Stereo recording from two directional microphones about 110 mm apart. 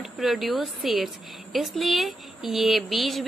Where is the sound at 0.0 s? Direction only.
Centre (ahead or behind).